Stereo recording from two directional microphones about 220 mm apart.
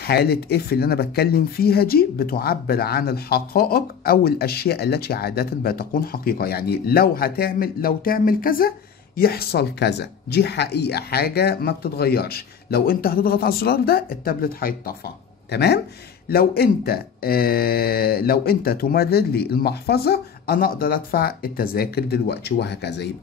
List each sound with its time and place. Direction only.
0.0 s speech: 45° left (ahead or behind)